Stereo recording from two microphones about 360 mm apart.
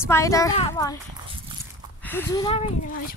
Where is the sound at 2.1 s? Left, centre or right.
Centre.